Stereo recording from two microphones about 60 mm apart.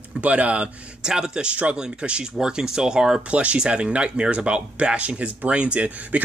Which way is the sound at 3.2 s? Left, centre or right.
Right.